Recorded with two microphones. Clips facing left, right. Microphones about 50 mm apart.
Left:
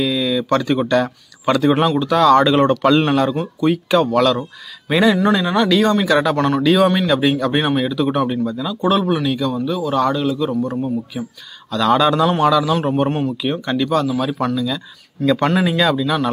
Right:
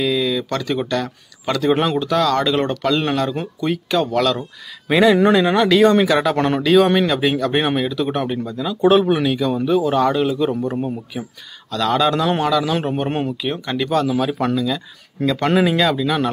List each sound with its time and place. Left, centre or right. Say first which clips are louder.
0.0 s a sound: left 1 dB; centre
0.5 s speech: left 5 dB; centre
5.1 s speech: right 2 dB; centre
6.3 s speech: left 1 dB; right
6.6 s speech: right 2 dB; centre
9.9 s speech: right 1 dB; centre
10.2 s speech: right 1 dB; right
11.1 s speech: left 2 dB; centre
15.2 s speech: left 3 dB; centre
15.5 s speech: even; centre